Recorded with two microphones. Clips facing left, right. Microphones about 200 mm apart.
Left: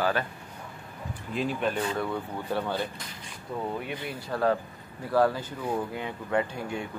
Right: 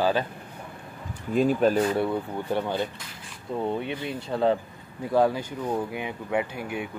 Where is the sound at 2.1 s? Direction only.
20° right (ahead or behind).